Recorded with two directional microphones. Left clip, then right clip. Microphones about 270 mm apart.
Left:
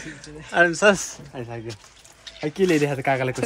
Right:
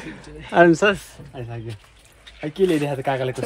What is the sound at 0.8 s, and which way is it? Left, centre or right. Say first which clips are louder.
Speech: left 2 dB; centre.